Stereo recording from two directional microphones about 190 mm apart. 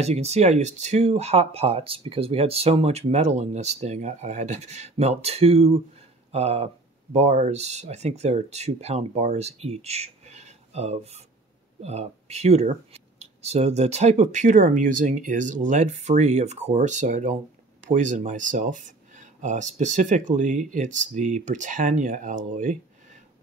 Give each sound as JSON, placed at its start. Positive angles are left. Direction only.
{"t": 0.0, "sound": "speech", "side_deg": -35}